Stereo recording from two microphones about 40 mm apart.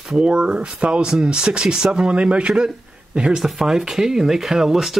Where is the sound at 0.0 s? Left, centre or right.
Right.